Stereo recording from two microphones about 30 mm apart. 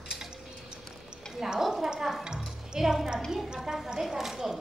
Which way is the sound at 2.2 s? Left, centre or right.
Right.